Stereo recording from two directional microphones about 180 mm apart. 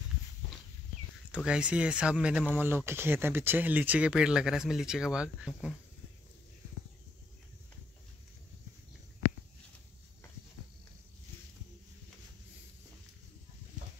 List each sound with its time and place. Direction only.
1.3 s speech: 5° right (ahead or behind)